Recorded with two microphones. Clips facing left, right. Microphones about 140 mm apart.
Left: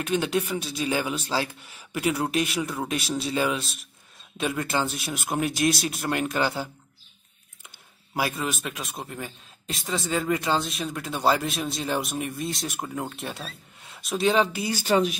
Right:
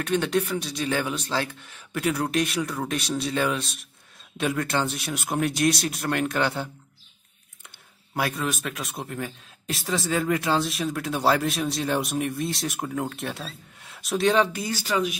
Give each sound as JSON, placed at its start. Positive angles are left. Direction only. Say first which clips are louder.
{"t": 0.0, "sound": "speech", "louder": "right 1 dB", "side_deg": 5}
{"t": 8.1, "sound": "speech", "louder": "right 1 dB", "side_deg": 0}
{"t": 14.9, "sound": "speech", "louder": "left 4 dB", "side_deg": 30}